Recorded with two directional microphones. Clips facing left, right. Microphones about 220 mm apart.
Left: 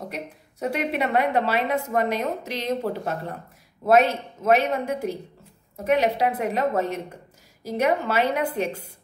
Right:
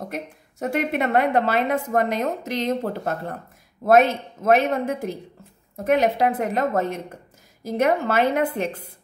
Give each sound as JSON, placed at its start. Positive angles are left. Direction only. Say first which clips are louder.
{"t": 0.1, "sound": "a woman's voice", "louder": "right 2 dB", "side_deg": -50}